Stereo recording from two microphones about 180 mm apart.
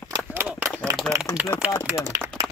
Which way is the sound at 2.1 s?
20° right (ahead or behind).